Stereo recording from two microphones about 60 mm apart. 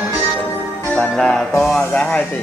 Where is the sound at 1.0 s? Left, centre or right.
Centre.